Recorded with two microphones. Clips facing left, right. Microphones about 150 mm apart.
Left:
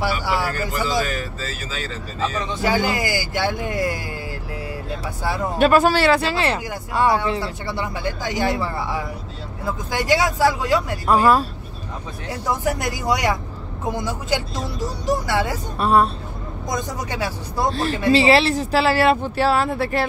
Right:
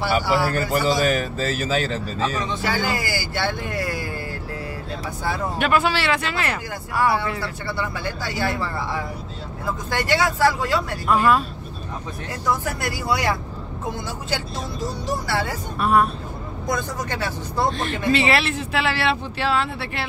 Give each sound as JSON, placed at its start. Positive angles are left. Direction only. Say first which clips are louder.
{"t": 0.0, "sound": "a sound", "louder": "right 2 dB", "side_deg": 15}
{"t": 1.1, "sound": "speech", "louder": "right 5 dB", "side_deg": -50}
{"t": 2.6, "sound": "speech", "louder": "left 6 dB", "side_deg": 15}
{"t": 5.6, "sound": "speech", "louder": "left 6 dB", "side_deg": 40}
{"t": 11.1, "sound": "speech", "louder": "left 2 dB", "side_deg": 35}
{"t": 12.6, "sound": "speech", "louder": "left 3 dB", "side_deg": 15}
{"t": 15.8, "sound": "speech", "louder": "left 2 dB", "side_deg": 30}
{"t": 16.7, "sound": "speech", "louder": "left 1 dB", "side_deg": 15}
{"t": 17.6, "sound": "speech", "louder": "left 5 dB", "side_deg": 35}